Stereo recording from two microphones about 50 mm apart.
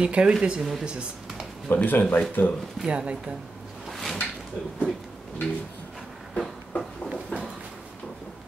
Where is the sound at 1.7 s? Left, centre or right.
Left.